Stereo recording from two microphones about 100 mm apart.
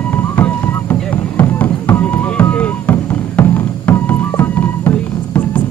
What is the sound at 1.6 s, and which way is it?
Music, 15° left (ahead or behind).